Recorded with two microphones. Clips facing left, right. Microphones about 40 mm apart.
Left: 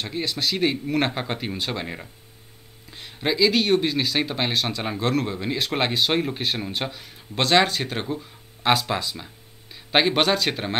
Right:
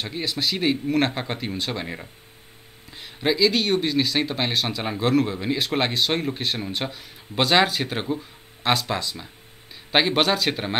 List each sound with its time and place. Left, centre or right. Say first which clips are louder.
0.0 s speech: even; centre